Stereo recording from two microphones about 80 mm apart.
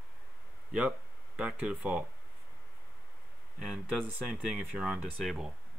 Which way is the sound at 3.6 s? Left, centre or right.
Centre.